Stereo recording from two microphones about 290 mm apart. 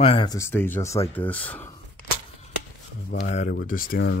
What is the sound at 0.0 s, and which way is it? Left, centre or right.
Speech, centre.